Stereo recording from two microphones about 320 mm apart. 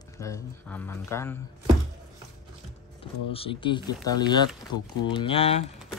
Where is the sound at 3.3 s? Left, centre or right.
Centre.